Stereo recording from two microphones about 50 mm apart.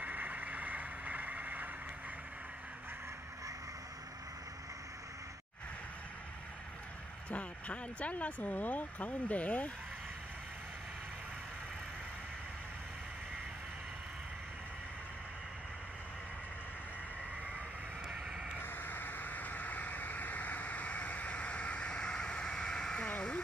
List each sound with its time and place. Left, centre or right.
0.0 s vehicle: right
7.2 s speech: left
18.6 s vehicle: left; by 23.0 s centre
23.0 s a sound: left